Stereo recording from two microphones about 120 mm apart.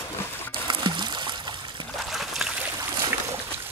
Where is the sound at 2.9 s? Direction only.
30° right (ahead or behind).